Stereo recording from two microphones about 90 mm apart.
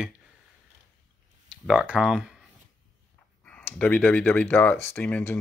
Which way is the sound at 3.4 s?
15° left (ahead or behind).